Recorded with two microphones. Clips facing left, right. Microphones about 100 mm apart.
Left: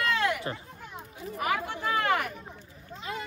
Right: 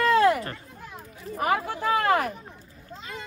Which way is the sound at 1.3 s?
35° right (ahead or behind).